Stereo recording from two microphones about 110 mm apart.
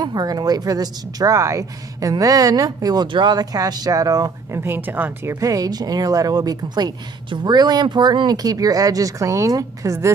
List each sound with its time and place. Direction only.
0.0 s speech: 35° right (ahead or behind)
4.6 s speech: 20° right (ahead or behind)